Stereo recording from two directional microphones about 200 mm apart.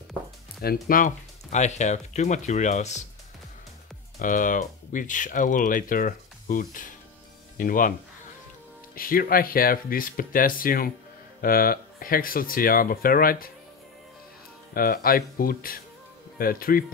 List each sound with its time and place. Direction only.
0.8 s speech: 40° left (ahead or behind)
4.2 s speech: 40° left (ahead or behind)
8.9 s speech: 45° left (ahead or behind)
14.7 s speech: 45° left (ahead or behind)